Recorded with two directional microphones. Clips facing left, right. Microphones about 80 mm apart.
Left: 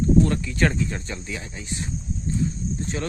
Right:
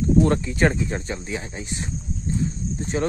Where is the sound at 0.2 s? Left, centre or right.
Right.